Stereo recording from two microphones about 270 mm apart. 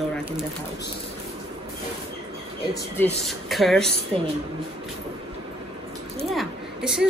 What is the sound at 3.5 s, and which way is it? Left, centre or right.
Speech, centre.